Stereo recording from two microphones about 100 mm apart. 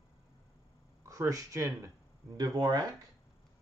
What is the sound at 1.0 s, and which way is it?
Speech, 35° right (ahead or behind).